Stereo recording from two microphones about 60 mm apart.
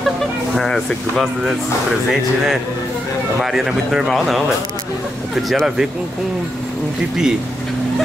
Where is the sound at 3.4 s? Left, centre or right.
Centre.